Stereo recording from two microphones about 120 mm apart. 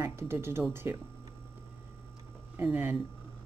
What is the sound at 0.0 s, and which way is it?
Speech, 20° right (ahead or behind).